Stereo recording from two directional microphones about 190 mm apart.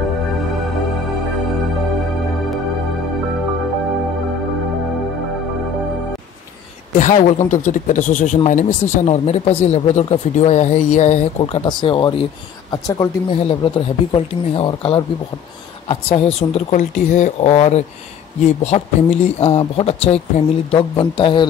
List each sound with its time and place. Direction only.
7.0 s speech: 40° left (ahead or behind)